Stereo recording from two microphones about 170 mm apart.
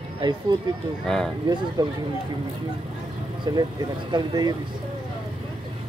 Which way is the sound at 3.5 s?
25° right (ahead or behind).